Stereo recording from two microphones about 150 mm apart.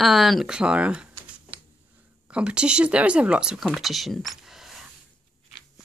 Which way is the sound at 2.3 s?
5° right (ahead or behind).